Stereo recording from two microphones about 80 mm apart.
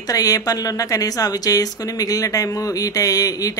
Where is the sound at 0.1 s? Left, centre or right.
Left.